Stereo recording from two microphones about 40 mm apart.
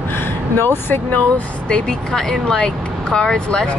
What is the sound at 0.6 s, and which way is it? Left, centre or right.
Speech, left.